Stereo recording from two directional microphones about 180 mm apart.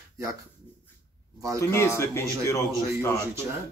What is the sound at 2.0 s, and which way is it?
A man's voice, 15° left (ahead or behind).